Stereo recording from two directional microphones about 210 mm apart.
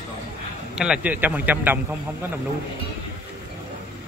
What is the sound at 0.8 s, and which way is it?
A man's voice, 5° right (ahead or behind).